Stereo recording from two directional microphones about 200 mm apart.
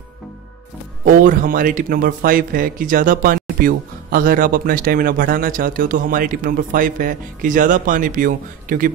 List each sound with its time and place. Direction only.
1.0 s speech: 40° right (ahead or behind)